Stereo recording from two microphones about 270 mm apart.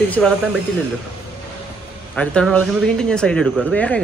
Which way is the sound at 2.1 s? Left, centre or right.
Centre.